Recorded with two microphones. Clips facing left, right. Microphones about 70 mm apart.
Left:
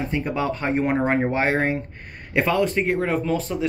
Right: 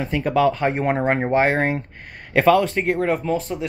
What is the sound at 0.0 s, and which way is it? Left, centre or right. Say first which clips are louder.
Speech: right 6 dB; right.